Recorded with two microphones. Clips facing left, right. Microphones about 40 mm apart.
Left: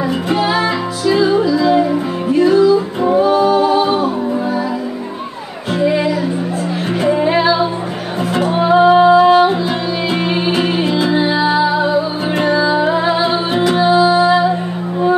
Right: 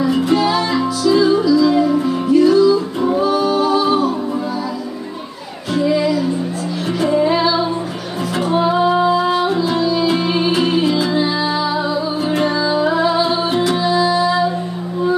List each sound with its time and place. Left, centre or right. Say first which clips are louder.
0.4 s music: left 1 dB; left
5.8 s music: left 1 dB; left